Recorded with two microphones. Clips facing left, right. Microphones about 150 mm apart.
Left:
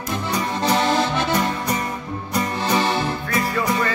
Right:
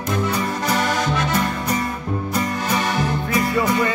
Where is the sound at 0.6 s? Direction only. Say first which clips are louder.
Left 3 dB; 30° left (ahead or behind).